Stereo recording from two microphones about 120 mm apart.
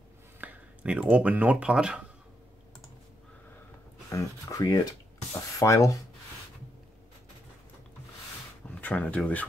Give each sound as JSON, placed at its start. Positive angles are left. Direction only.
{"t": 0.4, "sound": "speech", "side_deg": -10}
{"t": 4.1, "sound": "speech", "side_deg": 25}
{"t": 8.6, "sound": "speech", "side_deg": 10}